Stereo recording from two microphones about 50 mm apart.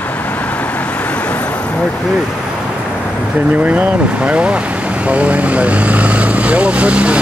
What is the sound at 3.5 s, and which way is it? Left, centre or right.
Speech, right.